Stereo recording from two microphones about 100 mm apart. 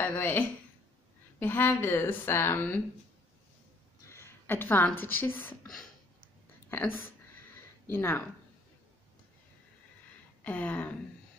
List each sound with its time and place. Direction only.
0.0 s a woman's voice: 20° left (ahead or behind)
4.1 s speech: 25° left (ahead or behind)
6.7 s speech: 20° left (ahead or behind)
10.4 s speech: 15° left (ahead or behind)